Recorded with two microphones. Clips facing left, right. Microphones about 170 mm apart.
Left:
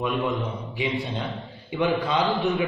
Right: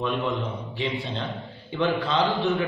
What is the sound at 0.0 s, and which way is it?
A man's voice, 15° left (ahead or behind).